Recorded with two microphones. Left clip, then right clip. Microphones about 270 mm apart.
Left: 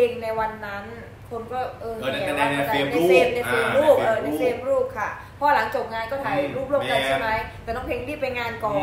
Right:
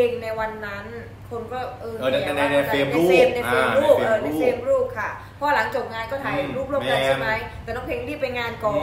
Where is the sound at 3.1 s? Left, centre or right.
Centre.